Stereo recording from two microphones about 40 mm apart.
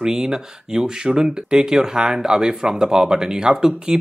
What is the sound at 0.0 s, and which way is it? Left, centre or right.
Speech, centre.